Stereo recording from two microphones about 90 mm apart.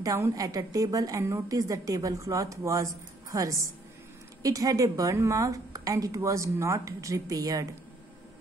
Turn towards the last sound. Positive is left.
turn(degrees=-45)  # may be behind; listen again after turning